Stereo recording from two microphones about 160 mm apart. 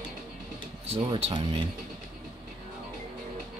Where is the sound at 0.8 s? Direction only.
35° right (ahead or behind).